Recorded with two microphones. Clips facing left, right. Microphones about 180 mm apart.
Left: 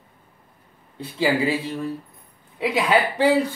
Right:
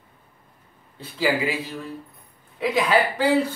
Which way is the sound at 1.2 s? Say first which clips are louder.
Left 2 dB; 30° left (ahead or behind).